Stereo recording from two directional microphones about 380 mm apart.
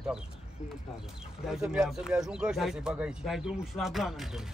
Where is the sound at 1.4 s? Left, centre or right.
Centre.